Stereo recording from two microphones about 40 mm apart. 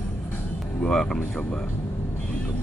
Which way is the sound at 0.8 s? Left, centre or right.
Centre.